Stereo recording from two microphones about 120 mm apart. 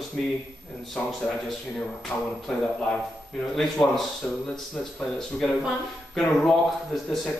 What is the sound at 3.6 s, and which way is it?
Speech, 5° left (ahead or behind).